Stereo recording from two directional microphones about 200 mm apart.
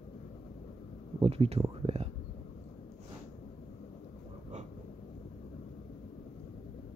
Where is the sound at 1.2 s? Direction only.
30° right (ahead or behind).